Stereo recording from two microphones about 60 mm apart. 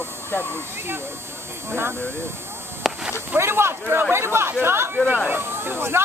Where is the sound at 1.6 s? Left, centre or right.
Right.